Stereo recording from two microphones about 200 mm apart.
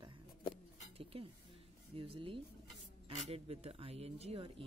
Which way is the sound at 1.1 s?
30° right (ahead or behind).